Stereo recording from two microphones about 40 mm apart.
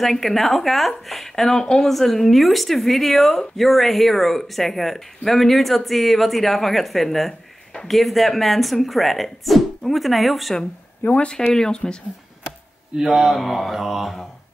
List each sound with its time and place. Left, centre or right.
0.0 s speech: centre
11.0 s speech: left
11.3 s speech: centre
12.4 s a sound: centre
13.3 s speech: centre